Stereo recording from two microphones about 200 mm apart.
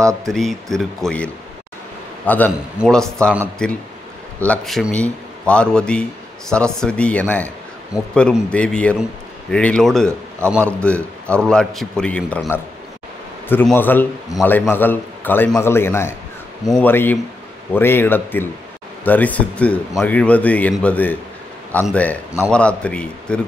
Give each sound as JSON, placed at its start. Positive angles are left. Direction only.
{"t": 0.2, "sound": "a man's voice", "side_deg": 0}
{"t": 4.5, "sound": "a man's voice", "side_deg": 0}